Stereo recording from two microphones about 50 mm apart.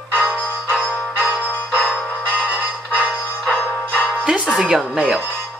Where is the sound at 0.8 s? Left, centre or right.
Left.